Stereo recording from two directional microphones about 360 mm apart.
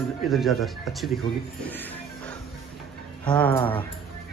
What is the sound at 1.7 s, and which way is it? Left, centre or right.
Music, centre.